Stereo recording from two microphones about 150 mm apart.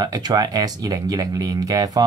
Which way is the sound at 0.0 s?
25° right (ahead or behind).